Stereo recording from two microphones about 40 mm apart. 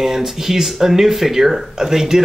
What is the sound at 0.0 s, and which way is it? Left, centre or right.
Speech, centre.